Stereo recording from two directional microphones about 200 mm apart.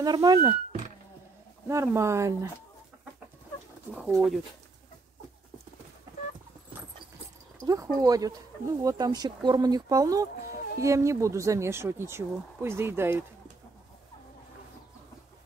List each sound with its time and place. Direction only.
0.0 s speech: 20° right (ahead or behind)
1.7 s speech: 15° right (ahead or behind)
3.9 s speech: centre (ahead or behind)
7.6 s speech: 15° right (ahead or behind)